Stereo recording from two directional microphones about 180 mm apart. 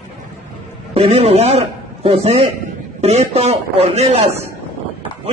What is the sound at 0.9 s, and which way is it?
A man's voice, 35° right (ahead or behind).